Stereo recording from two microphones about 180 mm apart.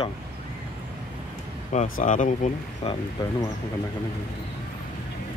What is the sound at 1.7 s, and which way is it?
Speech, 45° left (ahead or behind).